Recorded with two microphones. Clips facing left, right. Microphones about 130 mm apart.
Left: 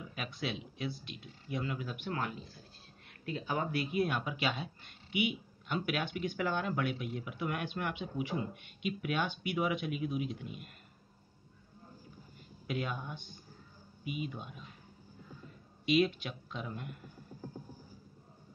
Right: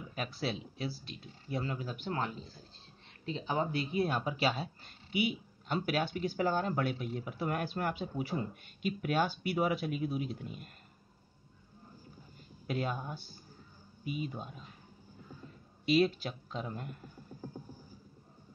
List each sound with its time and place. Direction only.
0.1 s speech: 35° right (ahead or behind)
12.6 s speech: 35° right (ahead or behind)
15.8 s speech: 35° right (ahead or behind)